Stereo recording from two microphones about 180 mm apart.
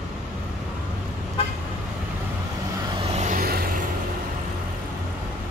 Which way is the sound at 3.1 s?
45° right (ahead or behind).